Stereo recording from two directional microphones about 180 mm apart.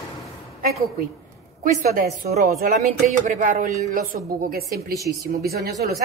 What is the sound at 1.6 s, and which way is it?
A woman's voice, 50° right (ahead or behind).